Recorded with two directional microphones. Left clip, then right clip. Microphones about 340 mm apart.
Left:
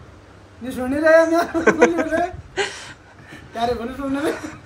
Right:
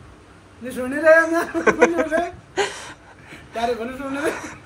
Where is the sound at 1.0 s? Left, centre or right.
Centre.